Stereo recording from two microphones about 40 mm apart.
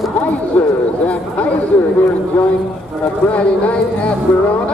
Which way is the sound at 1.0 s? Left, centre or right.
Left.